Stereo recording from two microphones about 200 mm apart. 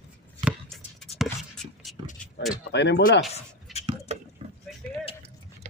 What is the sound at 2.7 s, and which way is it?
Speech, 60° left (ahead or behind).